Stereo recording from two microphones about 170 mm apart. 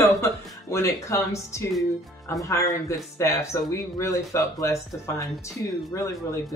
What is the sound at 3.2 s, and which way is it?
Speech, 15° left (ahead or behind).